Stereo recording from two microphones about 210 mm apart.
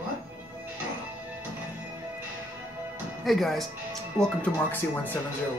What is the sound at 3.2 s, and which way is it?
Speech, centre (ahead or behind).